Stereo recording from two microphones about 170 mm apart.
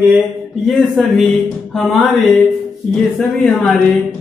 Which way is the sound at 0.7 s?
Centre (ahead or behind).